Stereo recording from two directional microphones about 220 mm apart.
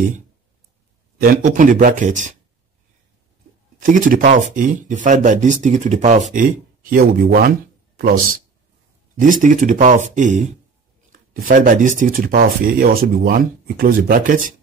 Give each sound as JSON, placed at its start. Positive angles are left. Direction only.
{"t": 1.2, "sound": "speech", "side_deg": -40}
{"t": 3.8, "sound": "speech", "side_deg": -40}